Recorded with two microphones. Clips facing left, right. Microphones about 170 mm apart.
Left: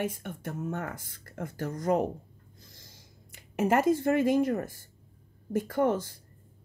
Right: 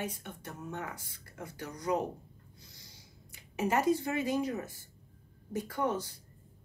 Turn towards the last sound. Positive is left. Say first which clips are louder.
# left 6 dB
turn(degrees=50)  # may be behind; listen again after turning